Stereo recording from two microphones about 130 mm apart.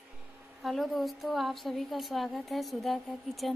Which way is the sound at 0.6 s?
Centre (ahead or behind).